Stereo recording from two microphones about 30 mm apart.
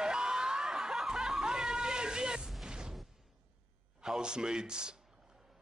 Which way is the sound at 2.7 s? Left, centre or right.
Right.